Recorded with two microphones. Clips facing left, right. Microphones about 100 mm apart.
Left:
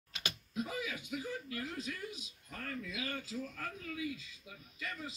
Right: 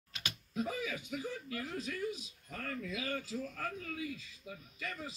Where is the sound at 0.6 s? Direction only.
40° right (ahead or behind).